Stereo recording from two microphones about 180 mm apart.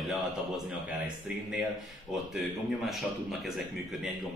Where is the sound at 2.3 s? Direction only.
Centre (ahead or behind).